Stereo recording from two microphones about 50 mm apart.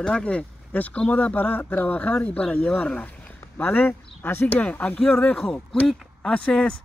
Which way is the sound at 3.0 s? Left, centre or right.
Left.